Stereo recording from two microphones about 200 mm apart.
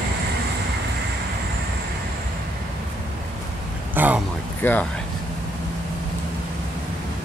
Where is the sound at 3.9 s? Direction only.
10° right (ahead or behind).